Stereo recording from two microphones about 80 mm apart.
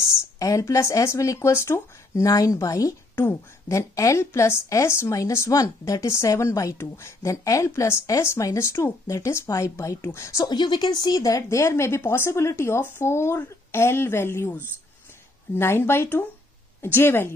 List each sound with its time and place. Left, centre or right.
0.4 s speech: left
10.4 s speech: left
11.4 s speech: left